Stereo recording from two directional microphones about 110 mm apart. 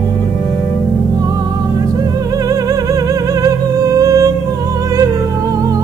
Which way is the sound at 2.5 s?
35° right (ahead or behind).